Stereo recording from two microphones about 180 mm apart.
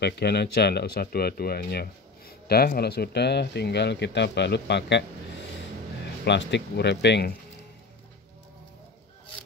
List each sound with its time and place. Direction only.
0.0 s speech: 65° left (ahead or behind)
6.2 s speech: 75° left (ahead or behind)